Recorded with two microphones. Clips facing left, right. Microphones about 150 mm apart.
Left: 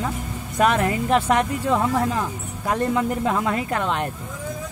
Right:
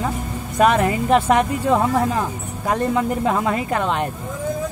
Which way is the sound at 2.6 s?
Centre (ahead or behind).